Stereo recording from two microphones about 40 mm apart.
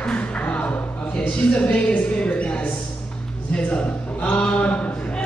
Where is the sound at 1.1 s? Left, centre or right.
Left.